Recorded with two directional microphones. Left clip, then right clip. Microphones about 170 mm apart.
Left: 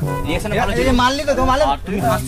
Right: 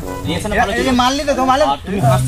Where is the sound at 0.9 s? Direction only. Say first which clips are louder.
Right 1 dB; 40° left (ahead or behind).